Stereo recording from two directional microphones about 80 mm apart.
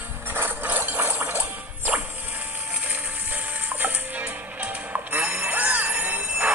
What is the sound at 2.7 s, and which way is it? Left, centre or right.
Music, centre.